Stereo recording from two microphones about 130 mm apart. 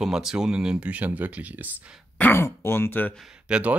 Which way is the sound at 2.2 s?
15° left (ahead or behind).